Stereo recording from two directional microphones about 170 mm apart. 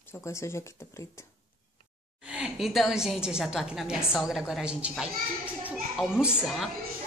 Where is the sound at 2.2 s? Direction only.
5° right (ahead or behind).